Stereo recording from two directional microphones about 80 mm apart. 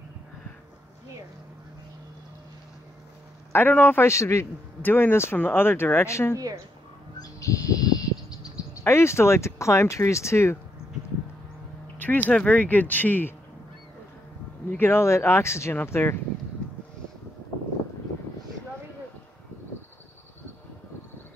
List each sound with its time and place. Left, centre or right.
3.5 s speech: left
4.8 s speech: left
7.2 s bird: left
8.8 s speech: left
12.0 s speech: left
14.8 s speech: left